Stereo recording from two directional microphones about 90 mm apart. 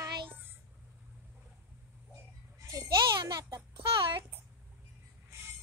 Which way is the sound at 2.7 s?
50° right (ahead or behind).